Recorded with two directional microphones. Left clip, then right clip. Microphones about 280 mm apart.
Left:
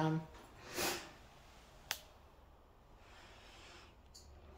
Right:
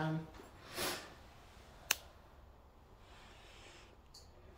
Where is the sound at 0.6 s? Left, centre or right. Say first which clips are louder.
Left 1 dB; centre.